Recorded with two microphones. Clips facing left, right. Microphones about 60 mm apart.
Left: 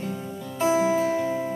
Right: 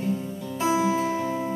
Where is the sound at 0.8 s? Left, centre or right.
Centre.